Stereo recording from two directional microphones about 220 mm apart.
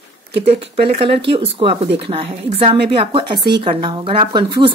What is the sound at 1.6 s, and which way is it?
Speech, 25° right (ahead or behind).